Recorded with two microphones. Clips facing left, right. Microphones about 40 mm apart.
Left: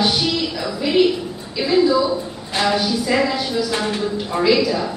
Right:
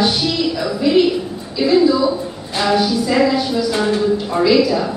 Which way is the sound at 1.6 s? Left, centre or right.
Centre.